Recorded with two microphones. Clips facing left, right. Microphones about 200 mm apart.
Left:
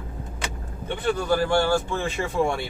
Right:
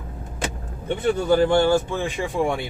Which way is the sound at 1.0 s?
25° right (ahead or behind).